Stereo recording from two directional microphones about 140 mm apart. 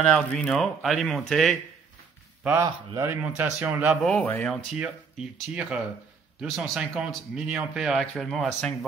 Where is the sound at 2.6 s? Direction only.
20° right (ahead or behind).